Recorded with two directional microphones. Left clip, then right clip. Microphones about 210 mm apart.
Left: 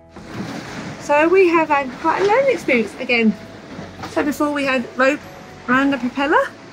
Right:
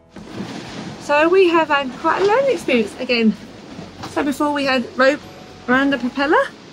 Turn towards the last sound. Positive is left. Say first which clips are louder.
# even
turn(degrees=-10)  # may be behind; listen again after turning